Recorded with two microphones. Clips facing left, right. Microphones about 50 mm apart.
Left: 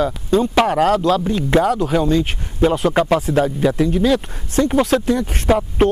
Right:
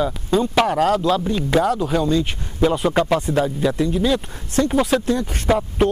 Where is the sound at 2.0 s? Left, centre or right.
Left.